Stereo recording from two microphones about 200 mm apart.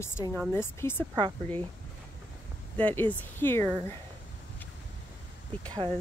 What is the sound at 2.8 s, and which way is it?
Speech, 10° left (ahead or behind).